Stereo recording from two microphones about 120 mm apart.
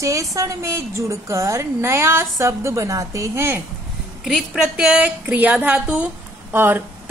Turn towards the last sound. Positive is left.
turn(degrees=-15)  # may be behind; listen again after turning